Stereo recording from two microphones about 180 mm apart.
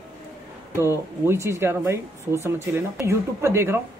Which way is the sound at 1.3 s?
15° right (ahead or behind).